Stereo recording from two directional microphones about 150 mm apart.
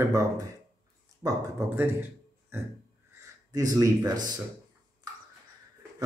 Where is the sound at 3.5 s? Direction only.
20° right (ahead or behind).